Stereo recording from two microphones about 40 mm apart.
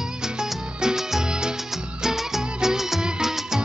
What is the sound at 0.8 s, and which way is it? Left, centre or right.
Music, centre.